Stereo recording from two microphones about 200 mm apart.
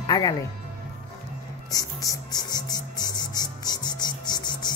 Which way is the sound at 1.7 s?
20° left (ahead or behind).